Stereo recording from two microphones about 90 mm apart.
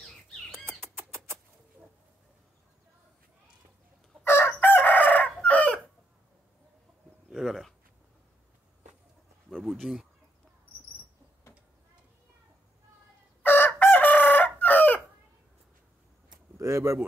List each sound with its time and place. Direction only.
0.5 s bird: 25° right (ahead or behind)
4.2 s chicken: 25° left (ahead or behind)
7.2 s bird: centre (ahead or behind)
9.5 s speech: centre (ahead or behind)
13.4 s chicken: 20° left (ahead or behind)
16.5 s a sound: 30° right (ahead or behind)